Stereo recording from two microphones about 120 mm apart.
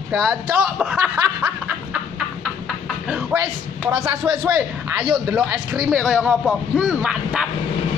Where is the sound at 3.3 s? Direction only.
20° right (ahead or behind).